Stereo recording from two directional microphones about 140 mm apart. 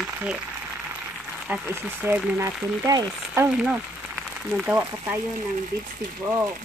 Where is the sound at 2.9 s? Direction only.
25° right (ahead or behind).